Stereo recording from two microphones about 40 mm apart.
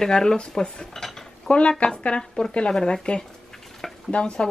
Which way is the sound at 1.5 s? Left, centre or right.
Left.